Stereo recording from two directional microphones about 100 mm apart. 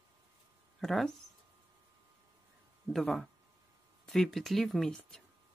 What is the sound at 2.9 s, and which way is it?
Speech, centre (ahead or behind).